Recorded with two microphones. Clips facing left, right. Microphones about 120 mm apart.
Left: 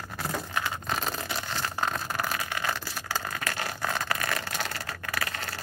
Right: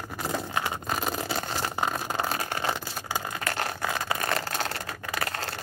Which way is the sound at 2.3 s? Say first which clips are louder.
Right 2 dB; 35° right (ahead or behind).